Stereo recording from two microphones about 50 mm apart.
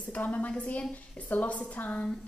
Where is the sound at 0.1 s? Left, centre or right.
Left.